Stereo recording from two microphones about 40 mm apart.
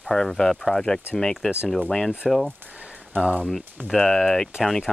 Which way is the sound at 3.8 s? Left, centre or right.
Centre.